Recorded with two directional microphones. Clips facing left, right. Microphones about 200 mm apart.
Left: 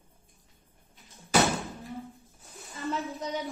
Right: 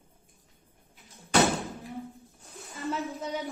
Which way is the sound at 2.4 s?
Centre (ahead or behind).